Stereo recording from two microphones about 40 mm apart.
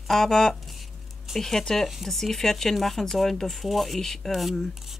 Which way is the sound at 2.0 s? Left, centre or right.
Centre.